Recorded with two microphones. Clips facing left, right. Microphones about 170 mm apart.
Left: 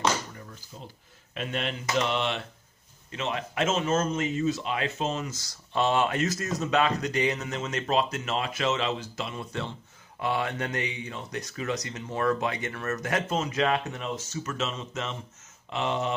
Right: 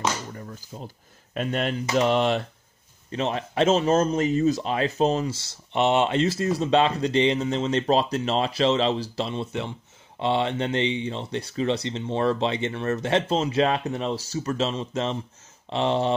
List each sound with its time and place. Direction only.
0.7 s a man's voice: 45° right (ahead or behind)